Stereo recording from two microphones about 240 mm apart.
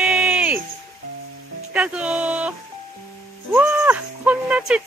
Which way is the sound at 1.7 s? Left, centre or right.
Centre.